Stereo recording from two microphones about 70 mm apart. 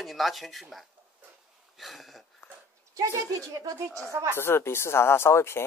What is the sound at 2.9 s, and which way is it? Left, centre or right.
Speech, right.